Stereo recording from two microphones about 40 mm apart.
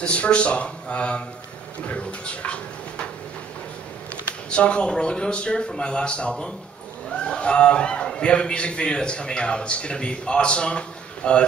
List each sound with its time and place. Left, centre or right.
0.0 s a man's voice: left
4.1 s a man's voice: left